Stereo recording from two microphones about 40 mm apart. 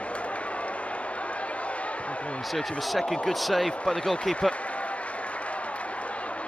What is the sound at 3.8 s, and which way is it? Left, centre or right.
Speech, left.